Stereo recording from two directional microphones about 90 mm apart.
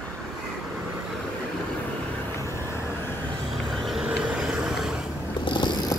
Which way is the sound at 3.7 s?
Centre (ahead or behind).